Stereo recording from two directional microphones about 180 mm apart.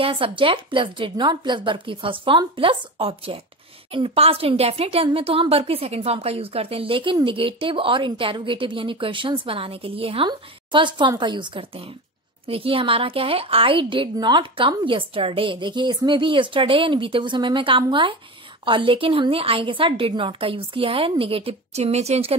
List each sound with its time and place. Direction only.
0.0 s a woman's voice: 30° right (ahead or behind)